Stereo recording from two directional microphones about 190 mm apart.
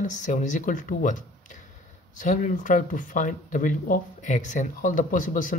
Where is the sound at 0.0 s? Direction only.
40° left (ahead or behind).